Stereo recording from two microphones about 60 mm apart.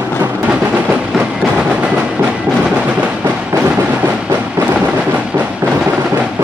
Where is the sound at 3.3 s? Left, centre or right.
Right.